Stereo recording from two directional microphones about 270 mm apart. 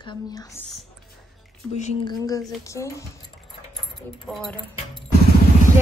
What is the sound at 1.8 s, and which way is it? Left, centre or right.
Speech, centre.